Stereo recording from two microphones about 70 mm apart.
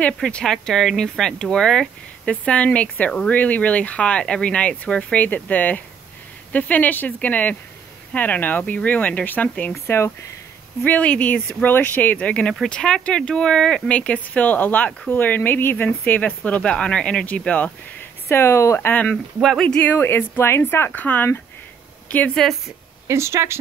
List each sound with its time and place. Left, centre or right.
0.0 s speech: centre
9.8 s speech: left
10.8 s speech: centre
18.3 s speech: left
18.9 s speech: left
19.6 s speech: centre
19.9 s speech: left
22.3 s speech: centre
23.0 s speech: right